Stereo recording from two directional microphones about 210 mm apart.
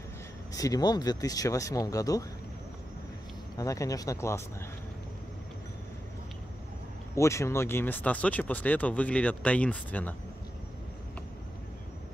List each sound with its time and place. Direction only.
0.5 s speech: 15° left (ahead or behind)
3.5 s speech: 15° left (ahead or behind)
7.2 s speech: 15° left (ahead or behind)